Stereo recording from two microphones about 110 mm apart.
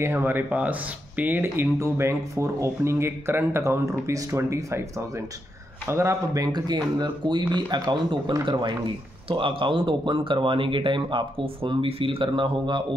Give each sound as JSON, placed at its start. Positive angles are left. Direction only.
{"t": 0.0, "sound": "speech", "side_deg": -20}
{"t": 6.4, "sound": "speech", "side_deg": -40}